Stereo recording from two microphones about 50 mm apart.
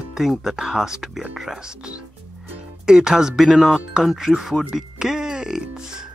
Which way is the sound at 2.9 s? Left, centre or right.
Centre.